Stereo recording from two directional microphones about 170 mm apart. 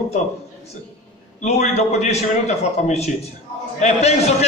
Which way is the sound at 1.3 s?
40° left (ahead or behind).